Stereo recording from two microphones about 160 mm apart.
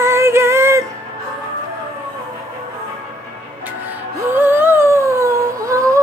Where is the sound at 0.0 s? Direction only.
15° right (ahead or behind).